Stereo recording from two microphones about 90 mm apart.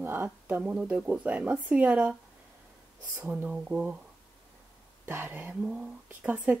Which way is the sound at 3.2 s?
15° right (ahead or behind).